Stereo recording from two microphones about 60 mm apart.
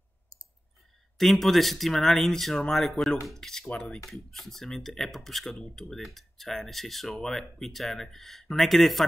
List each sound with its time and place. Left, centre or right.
1.1 s speech: centre
3.6 s cutlery: left
3.9 s speech: centre